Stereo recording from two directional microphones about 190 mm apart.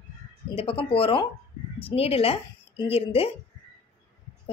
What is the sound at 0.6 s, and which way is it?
A woman's voice, 30° left (ahead or behind).